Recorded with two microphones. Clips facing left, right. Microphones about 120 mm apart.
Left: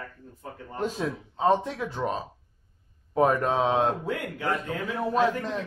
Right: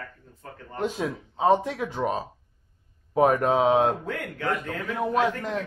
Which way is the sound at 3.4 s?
15° right (ahead or behind).